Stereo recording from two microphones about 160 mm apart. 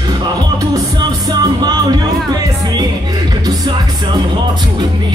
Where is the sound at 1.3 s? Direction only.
25° right (ahead or behind).